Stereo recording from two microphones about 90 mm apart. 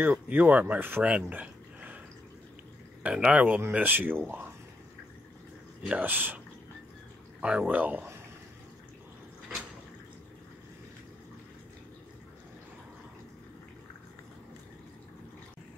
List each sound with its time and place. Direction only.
0.0 s speech: 20° right (ahead or behind)
1.3 s a sound: 15° right (ahead or behind)
3.0 s speech: 15° right (ahead or behind)
5.8 s speech: 15° right (ahead or behind)